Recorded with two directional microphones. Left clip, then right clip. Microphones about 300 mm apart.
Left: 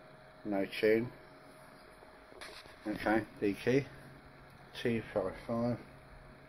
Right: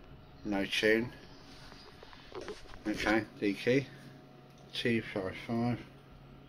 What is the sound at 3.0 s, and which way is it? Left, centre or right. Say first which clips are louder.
Speech: right 1 dB; centre.